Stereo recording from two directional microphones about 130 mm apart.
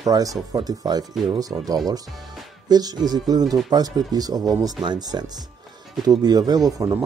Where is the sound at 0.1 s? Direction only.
30° right (ahead or behind).